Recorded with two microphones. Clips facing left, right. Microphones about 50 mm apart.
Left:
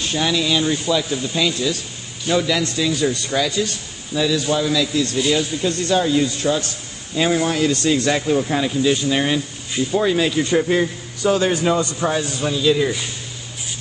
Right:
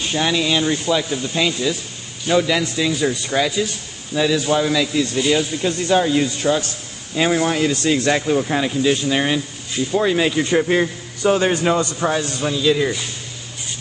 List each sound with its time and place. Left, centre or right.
0.1 s a man's voice: right
10.1 s a man's voice: centre
12.0 s speech: centre